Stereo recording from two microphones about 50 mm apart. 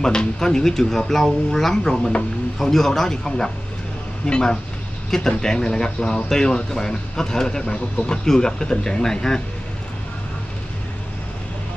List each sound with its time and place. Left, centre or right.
0.0 s speech: centre